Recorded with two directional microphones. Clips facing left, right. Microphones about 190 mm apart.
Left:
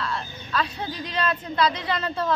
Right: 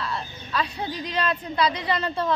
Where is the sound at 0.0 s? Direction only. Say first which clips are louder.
Left 1 dB; 5° right (ahead or behind).